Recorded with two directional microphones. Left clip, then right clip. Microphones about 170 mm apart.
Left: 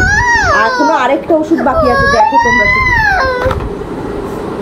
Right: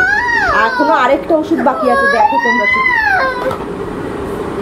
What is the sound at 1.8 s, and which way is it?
Speech, 75° left (ahead or behind).